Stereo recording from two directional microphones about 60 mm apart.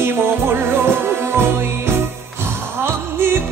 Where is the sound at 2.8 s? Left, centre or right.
Right.